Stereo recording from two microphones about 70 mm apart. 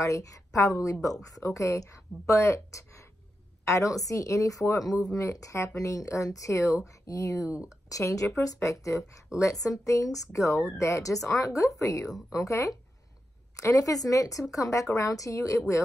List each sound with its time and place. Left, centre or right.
0.0 s a woman's voice: left